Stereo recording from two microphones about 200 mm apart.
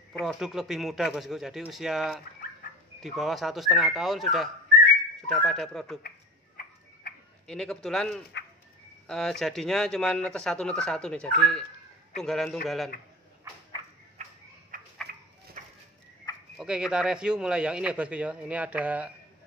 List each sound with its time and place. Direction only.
0.2 s speech: centre (ahead or behind)
6.0 s tick-tock: 50° left (ahead or behind)
7.4 s speech: 5° left (ahead or behind)
14.7 s a sound: 45° right (ahead or behind)
15.6 s bird: 35° right (ahead or behind)
16.5 s speech: 5° right (ahead or behind)